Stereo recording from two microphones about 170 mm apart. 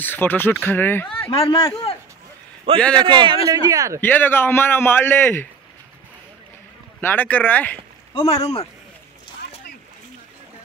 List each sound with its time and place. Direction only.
0.0 s a man's voice: 10° left (ahead or behind)
1.2 s a man's voice: 35° left (ahead or behind)
2.8 s speech: 5° left (ahead or behind)
3.1 s speech: 30° right (ahead or behind)
4.0 s a man's voice: 10° left (ahead or behind)
7.0 s a man's voice: 10° left (ahead or behind)
8.1 s speech: 25° left (ahead or behind)